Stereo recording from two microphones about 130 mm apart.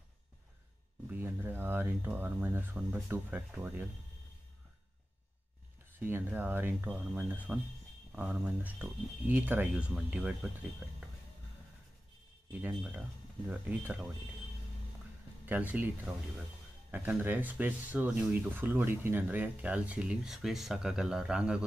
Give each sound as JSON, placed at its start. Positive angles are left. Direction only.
{"t": 1.1, "sound": "speech", "side_deg": -15}
{"t": 5.9, "sound": "speech", "side_deg": -15}
{"t": 12.5, "sound": "speech", "side_deg": -10}
{"t": 15.4, "sound": "speech", "side_deg": -10}
{"t": 16.9, "sound": "speech", "side_deg": -15}